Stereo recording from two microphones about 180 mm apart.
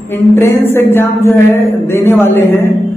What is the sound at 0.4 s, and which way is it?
A woman's voice, 10° left (ahead or behind).